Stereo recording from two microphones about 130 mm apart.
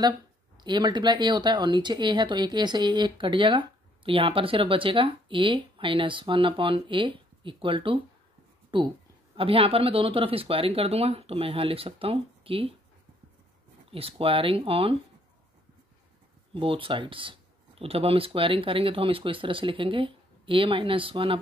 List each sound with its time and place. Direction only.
0.6 s speech: 35° right (ahead or behind)
13.9 s speech: 45° right (ahead or behind)
16.5 s speech: 45° right (ahead or behind)